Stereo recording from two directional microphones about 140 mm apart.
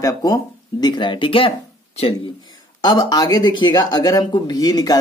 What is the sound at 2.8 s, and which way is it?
Speech, 25° left (ahead or behind).